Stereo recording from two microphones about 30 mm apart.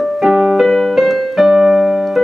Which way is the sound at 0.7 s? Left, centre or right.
Centre.